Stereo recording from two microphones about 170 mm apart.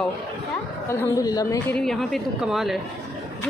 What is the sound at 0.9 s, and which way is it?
Speech, 15° left (ahead or behind).